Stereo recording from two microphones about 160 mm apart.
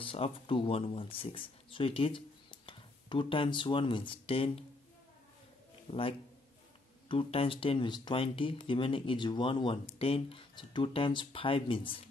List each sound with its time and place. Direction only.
0.0 s speech: 35° left (ahead or behind)
5.9 s a man's voice: 35° left (ahead or behind)